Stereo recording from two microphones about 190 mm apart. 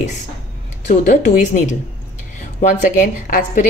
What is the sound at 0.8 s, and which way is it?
A woman's voice, 40° left (ahead or behind).